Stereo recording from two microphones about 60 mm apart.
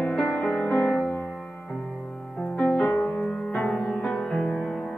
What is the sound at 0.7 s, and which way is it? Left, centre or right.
Music, left.